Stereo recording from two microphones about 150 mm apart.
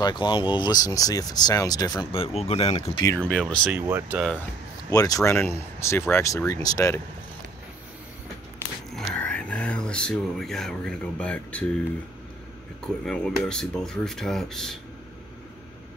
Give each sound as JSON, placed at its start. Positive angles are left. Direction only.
{"t": 0.0, "sound": "speech", "side_deg": 30}
{"t": 3.2, "sound": "speech", "side_deg": 5}
{"t": 3.7, "sound": "speech", "side_deg": -10}
{"t": 4.9, "sound": "speech", "side_deg": 25}
{"t": 8.9, "sound": "speech", "side_deg": 5}
{"t": 12.8, "sound": "speech", "side_deg": 5}